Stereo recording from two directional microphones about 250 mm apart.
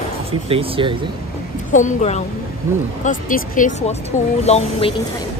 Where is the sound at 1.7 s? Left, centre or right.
Left.